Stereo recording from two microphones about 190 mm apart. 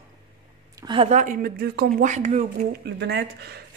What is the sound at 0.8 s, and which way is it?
Speech, 25° right (ahead or behind).